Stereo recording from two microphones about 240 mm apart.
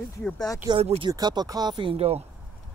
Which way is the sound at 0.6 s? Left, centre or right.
Right.